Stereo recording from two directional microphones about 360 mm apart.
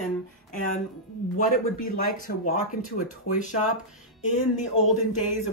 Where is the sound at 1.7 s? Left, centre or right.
Left.